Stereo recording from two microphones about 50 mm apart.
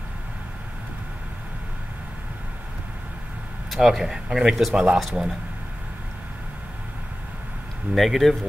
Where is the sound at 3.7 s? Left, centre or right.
Centre.